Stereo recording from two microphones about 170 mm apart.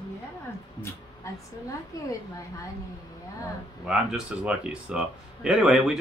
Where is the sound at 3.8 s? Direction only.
5° right (ahead or behind).